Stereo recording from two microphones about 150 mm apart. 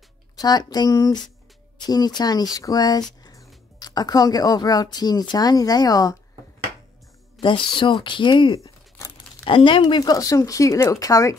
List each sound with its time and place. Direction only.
0.4 s speech: 25° left (ahead or behind)
7.3 s speech: 35° left (ahead or behind)